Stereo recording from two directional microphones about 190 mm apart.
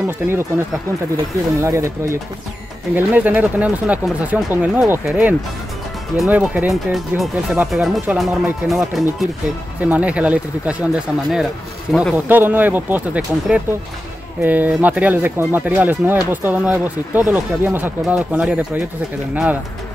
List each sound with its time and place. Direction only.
0.0 s speech: 10° right (ahead or behind)
1.6 s speech: 15° right (ahead or behind)
11.9 s speech: centre (ahead or behind)
12.3 s speech: 10° right (ahead or behind)